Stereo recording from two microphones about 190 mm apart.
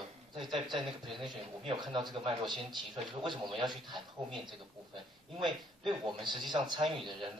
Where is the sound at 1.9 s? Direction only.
25° right (ahead or behind).